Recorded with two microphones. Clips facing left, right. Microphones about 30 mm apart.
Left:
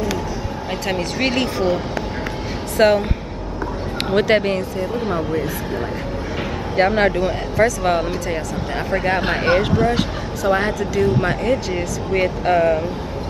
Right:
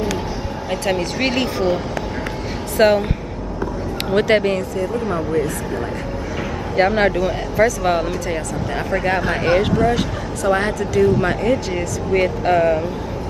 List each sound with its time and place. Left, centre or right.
0.7 s speech: centre
2.8 s speech: centre
4.1 s speech: centre
6.8 s speech: centre
9.3 s speech: centre
10.5 s speech: centre